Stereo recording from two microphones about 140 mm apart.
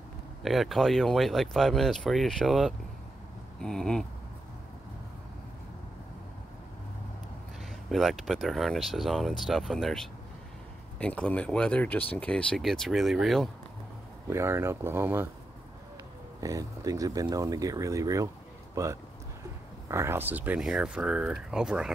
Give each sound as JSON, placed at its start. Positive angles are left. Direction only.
{"t": 0.4, "sound": "speech", "side_deg": 0}
{"t": 7.9, "sound": "speech", "side_deg": 0}
{"t": 14.3, "sound": "speech", "side_deg": -20}
{"t": 16.3, "sound": "speech", "side_deg": -25}